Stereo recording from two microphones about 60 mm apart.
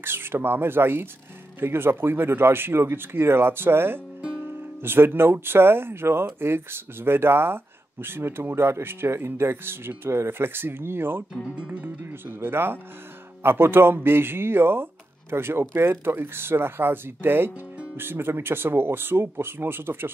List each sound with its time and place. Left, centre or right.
0.0 s speech: right
11.6 s music: right
12.0 s speech: right